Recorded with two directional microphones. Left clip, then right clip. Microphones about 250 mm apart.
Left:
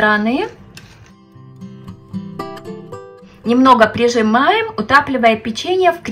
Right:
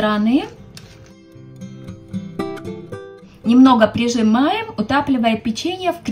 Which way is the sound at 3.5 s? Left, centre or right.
Centre.